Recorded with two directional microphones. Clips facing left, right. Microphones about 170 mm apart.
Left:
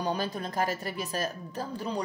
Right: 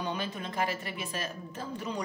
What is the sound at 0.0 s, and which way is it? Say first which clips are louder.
A woman's voice: left 4 dB; 40° left (ahead or behind).